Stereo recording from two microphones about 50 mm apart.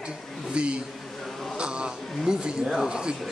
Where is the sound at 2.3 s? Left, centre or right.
Centre.